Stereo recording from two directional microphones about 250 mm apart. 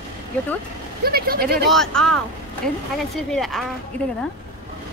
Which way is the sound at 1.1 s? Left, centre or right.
Right.